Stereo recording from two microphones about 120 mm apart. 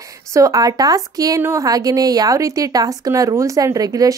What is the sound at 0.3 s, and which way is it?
A woman's voice, 30° right (ahead or behind).